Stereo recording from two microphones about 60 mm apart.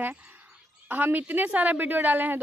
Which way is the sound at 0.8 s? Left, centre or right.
Right.